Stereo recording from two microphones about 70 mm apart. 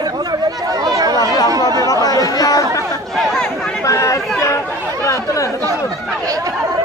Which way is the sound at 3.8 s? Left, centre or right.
Left.